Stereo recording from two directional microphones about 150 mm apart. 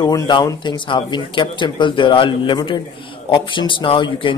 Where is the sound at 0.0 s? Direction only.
30° left (ahead or behind).